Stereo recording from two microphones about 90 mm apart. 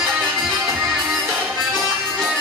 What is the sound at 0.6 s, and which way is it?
Music, 25° right (ahead or behind).